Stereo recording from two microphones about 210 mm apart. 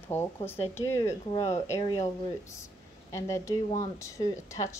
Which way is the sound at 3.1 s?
15° left (ahead or behind).